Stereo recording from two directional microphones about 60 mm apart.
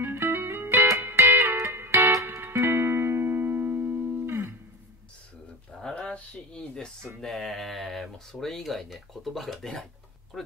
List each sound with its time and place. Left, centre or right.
0.0 s music: right
0.7 s music: right
5.7 s pigeon: centre
6.1 s a sound: centre
7.2 s speech: centre